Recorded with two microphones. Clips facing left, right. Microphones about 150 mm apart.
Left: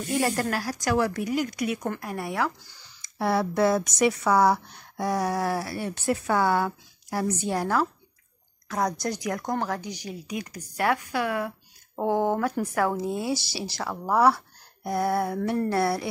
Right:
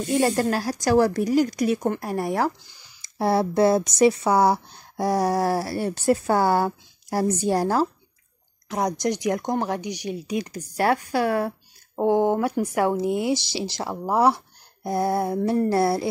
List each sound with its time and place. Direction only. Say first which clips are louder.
0.0 s speech: right 5 dB; 25° right (ahead or behind)
2.6 s speech: left 1 dB; 15° right (ahead or behind)
3.0 s speech: right 3 dB; 30° right (ahead or behind)
8.6 s speech: right 3 dB; 20° right (ahead or behind)
11.9 s speech: right 4 dB; 15° right (ahead or behind)